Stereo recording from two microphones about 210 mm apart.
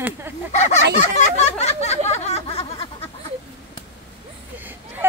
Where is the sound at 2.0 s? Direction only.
30° left (ahead or behind).